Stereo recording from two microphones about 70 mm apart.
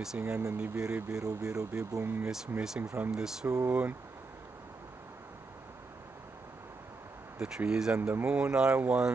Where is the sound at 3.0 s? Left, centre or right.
Right.